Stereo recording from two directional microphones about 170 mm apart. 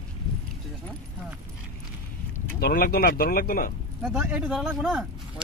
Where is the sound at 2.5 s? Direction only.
65° left (ahead or behind).